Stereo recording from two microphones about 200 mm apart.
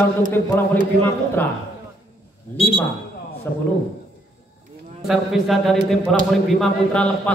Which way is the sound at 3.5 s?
10° left (ahead or behind).